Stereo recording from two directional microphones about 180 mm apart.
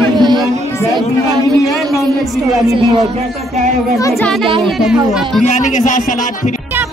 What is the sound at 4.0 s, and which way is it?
Speech, 15° left (ahead or behind).